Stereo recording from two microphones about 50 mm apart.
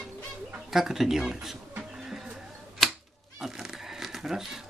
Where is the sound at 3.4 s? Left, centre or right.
Centre.